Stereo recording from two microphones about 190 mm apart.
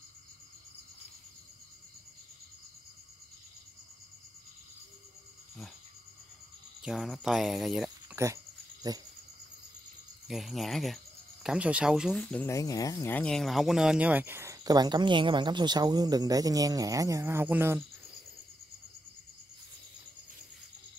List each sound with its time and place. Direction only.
6.8 s speech: centre (ahead or behind)
8.8 s cricket: 20° right (ahead or behind)
10.2 s cricket: centre (ahead or behind)
11.4 s speech: 5° right (ahead or behind)